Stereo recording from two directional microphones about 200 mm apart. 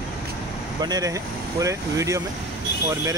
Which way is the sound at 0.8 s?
20° right (ahead or behind).